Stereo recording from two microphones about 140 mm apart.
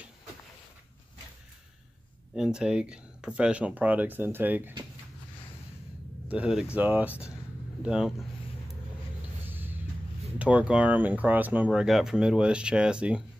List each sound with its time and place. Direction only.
2.3 s speech: 5° right (ahead or behind)
6.2 s speech: 5° right (ahead or behind)
9.5 s vehicle: 15° right (ahead or behind)
10.4 s speech: 10° right (ahead or behind)